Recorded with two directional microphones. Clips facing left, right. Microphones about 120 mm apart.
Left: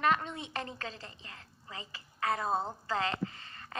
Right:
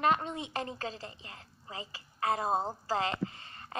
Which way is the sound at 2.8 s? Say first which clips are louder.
Right 1 dB; 25° right (ahead or behind).